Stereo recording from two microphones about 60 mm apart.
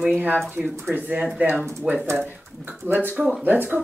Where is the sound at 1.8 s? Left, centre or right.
Centre.